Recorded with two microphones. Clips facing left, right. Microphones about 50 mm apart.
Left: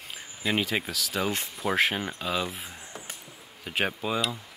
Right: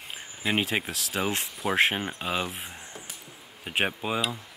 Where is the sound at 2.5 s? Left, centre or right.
Right.